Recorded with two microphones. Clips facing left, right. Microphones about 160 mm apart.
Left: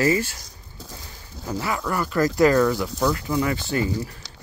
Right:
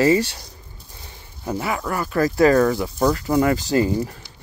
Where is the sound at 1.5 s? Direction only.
20° right (ahead or behind).